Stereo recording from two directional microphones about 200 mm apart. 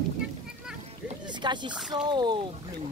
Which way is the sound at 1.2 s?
20° right (ahead or behind).